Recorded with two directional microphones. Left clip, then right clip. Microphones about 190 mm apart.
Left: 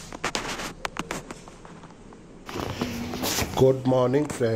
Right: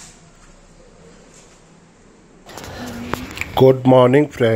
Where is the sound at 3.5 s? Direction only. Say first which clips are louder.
Right 10 dB; 20° right (ahead or behind).